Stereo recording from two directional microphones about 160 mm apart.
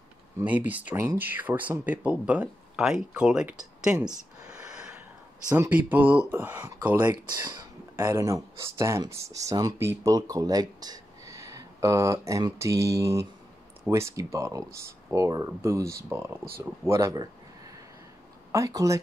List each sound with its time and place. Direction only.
0.4 s speech: 10° right (ahead or behind)
4.6 s gasp: 5° right (ahead or behind)
5.5 s speech: 15° right (ahead or behind)
7.1 s speech: 25° right (ahead or behind)
18.5 s speech: 20° right (ahead or behind)